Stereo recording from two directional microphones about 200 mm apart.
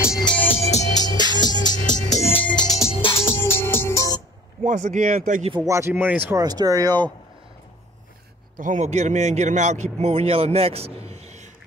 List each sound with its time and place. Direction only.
0.6 s music: 35° left (ahead or behind)
0.9 s music: 20° left (ahead or behind)
1.6 s music: 40° left (ahead or behind)
2.3 s music: 5° left (ahead or behind)
2.6 s music: 20° left (ahead or behind)
3.2 s music: 10° left (ahead or behind)
4.6 s a man's voice: 40° right (ahead or behind)
5.5 s speech: 15° right (ahead or behind)
8.5 s a man's voice: 40° right (ahead or behind)